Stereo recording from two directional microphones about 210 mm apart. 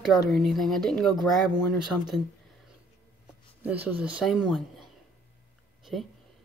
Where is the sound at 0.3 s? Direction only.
Centre (ahead or behind).